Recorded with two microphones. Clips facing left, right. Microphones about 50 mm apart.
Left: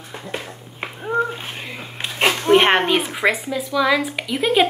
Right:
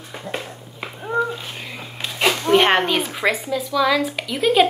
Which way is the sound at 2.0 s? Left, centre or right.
Left.